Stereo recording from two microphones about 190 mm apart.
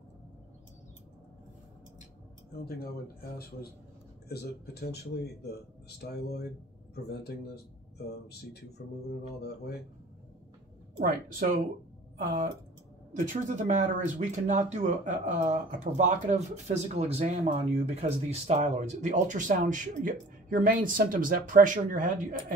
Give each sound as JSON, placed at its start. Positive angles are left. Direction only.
{"t": 4.3, "sound": "speech", "side_deg": 60}
{"t": 11.0, "sound": "speech", "side_deg": -50}